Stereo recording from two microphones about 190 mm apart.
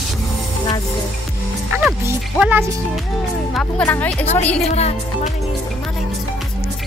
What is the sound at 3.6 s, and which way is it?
Speech, 5° left (ahead or behind).